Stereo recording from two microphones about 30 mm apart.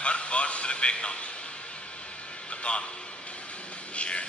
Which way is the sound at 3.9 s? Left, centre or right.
Left.